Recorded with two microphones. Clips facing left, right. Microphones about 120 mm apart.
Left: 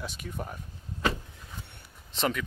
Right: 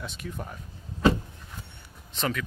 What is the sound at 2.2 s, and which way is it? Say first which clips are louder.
Speech: left 1 dB; 15° left (ahead or behind).